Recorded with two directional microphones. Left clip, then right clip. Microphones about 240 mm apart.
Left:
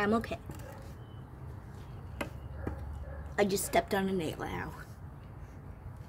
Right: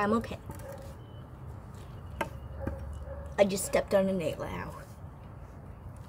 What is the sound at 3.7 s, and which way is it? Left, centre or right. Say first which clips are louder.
Speech: right 5 dB; centre.